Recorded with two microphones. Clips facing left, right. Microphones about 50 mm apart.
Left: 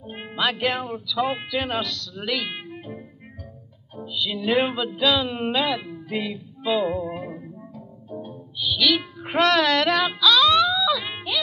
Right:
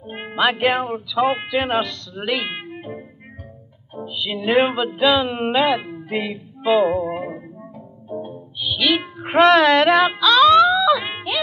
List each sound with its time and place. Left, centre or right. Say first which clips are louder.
0.0 s speech: right 6 dB; right
3.9 s music: right 2 dB; right